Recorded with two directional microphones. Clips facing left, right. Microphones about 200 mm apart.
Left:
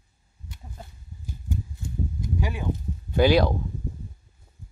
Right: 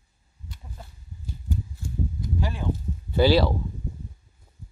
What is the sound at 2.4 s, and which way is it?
Speech, 15° left (ahead or behind).